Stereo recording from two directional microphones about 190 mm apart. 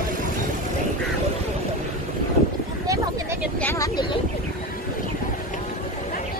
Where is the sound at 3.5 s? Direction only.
15° left (ahead or behind).